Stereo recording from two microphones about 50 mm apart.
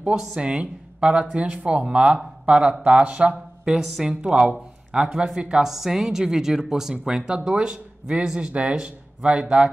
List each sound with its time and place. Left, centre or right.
0.1 s a woman's voice: centre
0.4 s speech: right
3.7 s a woman's voice: centre
4.0 s a woman's voice: centre